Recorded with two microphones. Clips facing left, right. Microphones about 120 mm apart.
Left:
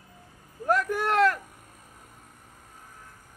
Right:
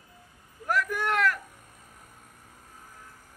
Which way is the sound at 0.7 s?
30° left (ahead or behind).